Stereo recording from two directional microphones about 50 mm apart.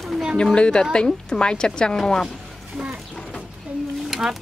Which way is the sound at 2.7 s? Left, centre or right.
Centre.